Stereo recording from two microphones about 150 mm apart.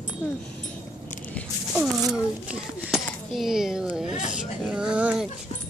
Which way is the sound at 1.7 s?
5° right (ahead or behind).